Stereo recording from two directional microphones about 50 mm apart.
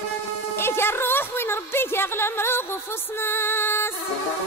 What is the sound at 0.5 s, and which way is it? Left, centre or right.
A woman's voice, left.